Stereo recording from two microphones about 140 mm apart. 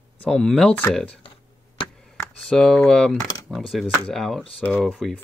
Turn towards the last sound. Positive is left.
turn(degrees=0)  # may be behind; listen again after turning